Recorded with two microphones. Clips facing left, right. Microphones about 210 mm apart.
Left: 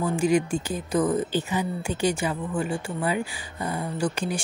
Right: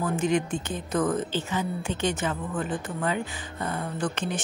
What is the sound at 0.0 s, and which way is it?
Speech, 10° left (ahead or behind).